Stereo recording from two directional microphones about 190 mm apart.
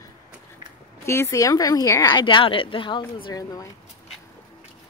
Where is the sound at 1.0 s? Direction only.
15° left (ahead or behind).